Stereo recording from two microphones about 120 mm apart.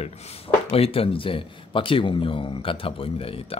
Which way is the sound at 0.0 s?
60° left (ahead or behind).